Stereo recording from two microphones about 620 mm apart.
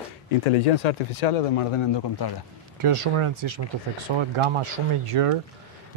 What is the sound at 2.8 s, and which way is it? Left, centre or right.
Speech, right.